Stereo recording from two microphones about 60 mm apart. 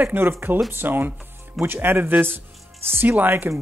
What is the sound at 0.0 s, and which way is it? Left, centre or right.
Speech, right.